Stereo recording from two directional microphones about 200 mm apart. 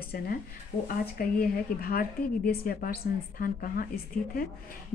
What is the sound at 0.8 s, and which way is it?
Speech, 45° left (ahead or behind).